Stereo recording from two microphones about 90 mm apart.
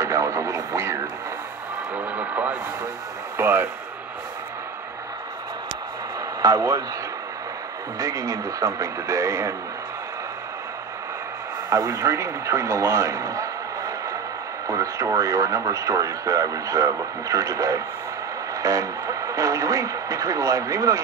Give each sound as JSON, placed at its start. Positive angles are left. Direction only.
{"t": 0.0, "sound": "radio", "side_deg": -35}
{"t": 2.0, "sound": "a sound", "side_deg": -15}
{"t": 6.4, "sound": "speech", "side_deg": -40}
{"t": 8.0, "sound": "speech", "side_deg": -40}
{"t": 11.7, "sound": "speech", "side_deg": -35}